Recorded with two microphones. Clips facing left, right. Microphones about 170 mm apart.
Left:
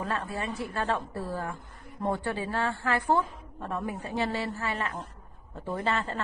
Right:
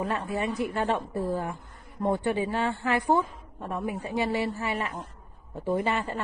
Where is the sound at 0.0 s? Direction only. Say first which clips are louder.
Right 4 dB; 15° right (ahead or behind).